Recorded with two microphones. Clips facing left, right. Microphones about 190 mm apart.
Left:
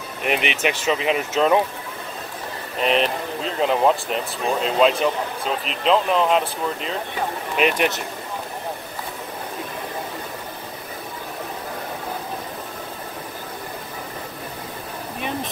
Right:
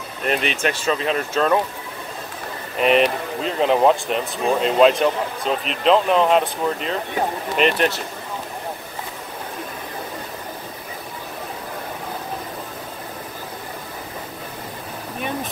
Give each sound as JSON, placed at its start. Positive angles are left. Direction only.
{"t": 0.2, "sound": "speech", "side_deg": 15}
{"t": 2.8, "sound": "speech", "side_deg": -5}